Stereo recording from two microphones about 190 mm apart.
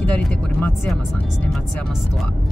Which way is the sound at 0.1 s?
5° left (ahead or behind).